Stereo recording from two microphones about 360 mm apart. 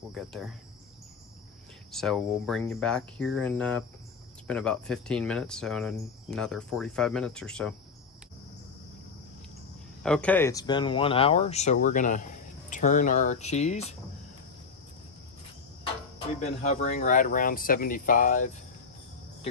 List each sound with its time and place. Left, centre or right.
0.1 s speech: centre
1.9 s speech: centre
10.0 s speech: centre
16.3 s speech: centre